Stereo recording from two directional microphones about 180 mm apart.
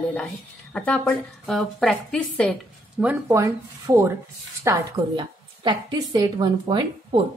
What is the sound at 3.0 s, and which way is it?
A woman's voice, 15° right (ahead or behind).